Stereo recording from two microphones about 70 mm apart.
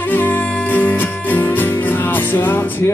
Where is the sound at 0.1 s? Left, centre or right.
Left.